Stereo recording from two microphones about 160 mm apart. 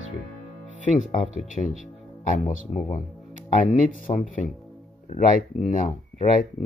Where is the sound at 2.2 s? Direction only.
50° left (ahead or behind).